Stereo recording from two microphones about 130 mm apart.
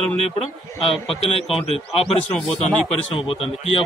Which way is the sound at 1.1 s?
50° left (ahead or behind).